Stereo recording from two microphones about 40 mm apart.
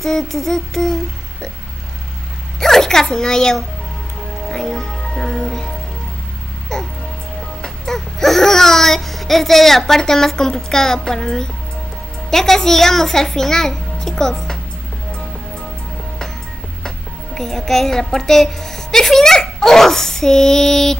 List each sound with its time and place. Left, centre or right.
0.0 s a woman's voice: centre
2.6 s a child's voice: centre
4.5 s music: centre
6.7 s music: centre
7.6 s a woman's voice: centre
16.8 s a woman's voice: centre